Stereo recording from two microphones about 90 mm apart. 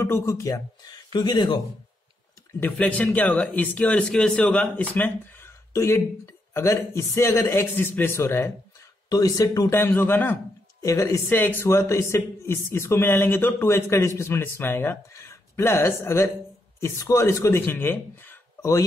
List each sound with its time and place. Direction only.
0.0 s speech: 30° left (ahead or behind)
1.1 s speech: 55° left (ahead or behind)
2.6 s speech: 15° left (ahead or behind)
5.7 s a man's voice: 35° left (ahead or behind)
9.1 s speech: 40° left (ahead or behind)
9.8 s a man's voice: 25° left (ahead or behind)